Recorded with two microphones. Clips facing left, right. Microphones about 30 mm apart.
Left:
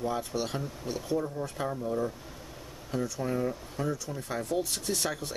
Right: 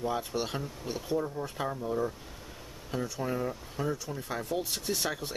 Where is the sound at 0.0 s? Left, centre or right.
Centre.